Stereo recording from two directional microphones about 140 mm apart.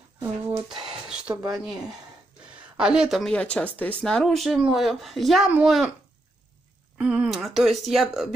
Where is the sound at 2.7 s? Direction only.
5° right (ahead or behind).